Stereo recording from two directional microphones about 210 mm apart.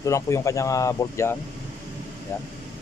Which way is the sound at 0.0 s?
15° left (ahead or behind).